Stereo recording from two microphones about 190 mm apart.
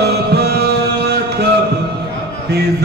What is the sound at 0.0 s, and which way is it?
Music, 60° right (ahead or behind).